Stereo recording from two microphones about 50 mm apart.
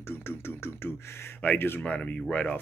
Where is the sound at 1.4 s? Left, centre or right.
Left.